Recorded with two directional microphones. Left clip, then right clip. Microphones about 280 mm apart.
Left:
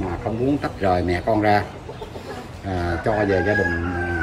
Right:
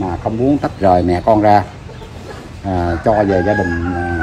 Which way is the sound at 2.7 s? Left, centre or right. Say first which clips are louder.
Right 8 dB; centre.